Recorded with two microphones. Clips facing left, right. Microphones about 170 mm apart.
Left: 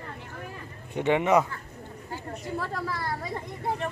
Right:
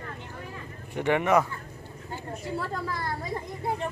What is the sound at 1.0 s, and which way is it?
Speech, 20° left (ahead or behind).